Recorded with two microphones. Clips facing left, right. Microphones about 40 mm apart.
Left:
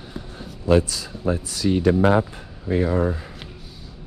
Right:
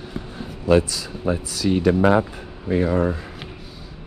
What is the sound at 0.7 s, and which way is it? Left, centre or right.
Speech, right.